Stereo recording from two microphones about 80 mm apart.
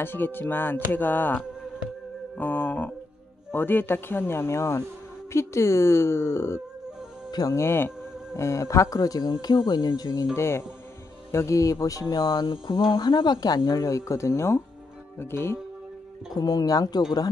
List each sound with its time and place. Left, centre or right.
0.0 s a woman's voice: left
7.2 s music: left
7.5 s a woman's voice: left
9.3 s speech: left
10.3 s a woman's voice: left
16.3 s speech: left